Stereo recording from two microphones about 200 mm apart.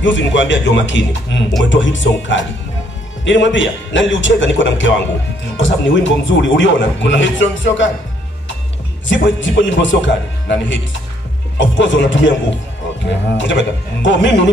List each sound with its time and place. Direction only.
0.0 s a man's voice: 65° left (ahead or behind)
9.0 s a man's voice: 70° left (ahead or behind)
11.5 s a man's voice: 65° left (ahead or behind)